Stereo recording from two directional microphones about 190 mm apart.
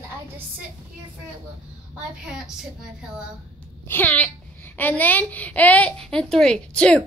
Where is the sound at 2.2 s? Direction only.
5° right (ahead or behind).